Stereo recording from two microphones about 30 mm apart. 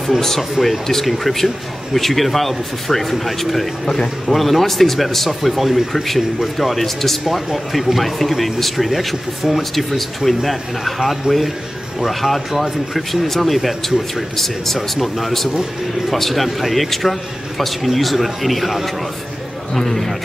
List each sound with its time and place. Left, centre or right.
0.4 s speech: centre
3.8 s a man's voice: left
4.3 s speech: centre
9.6 s speech: centre
14.8 s speech: centre
15.2 s speech: centre
19.8 s speech: centre